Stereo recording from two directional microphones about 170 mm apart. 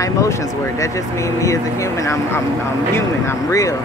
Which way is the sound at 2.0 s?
20° left (ahead or behind).